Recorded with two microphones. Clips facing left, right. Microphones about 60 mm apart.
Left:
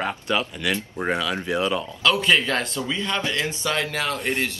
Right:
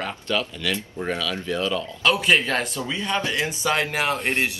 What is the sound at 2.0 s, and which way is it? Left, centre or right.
Speech, centre.